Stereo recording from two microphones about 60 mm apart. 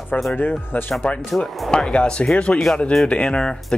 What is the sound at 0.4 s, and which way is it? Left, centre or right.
Speech, left.